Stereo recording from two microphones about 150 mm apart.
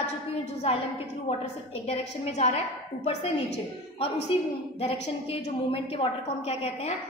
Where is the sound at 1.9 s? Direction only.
50° left (ahead or behind).